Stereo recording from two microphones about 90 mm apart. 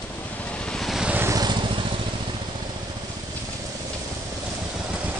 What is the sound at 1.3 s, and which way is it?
Vehicle, 55° right (ahead or behind).